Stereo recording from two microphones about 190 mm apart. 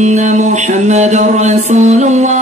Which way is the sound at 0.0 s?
40° right (ahead or behind).